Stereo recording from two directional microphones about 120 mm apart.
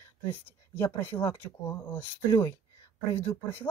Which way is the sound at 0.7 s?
20° left (ahead or behind).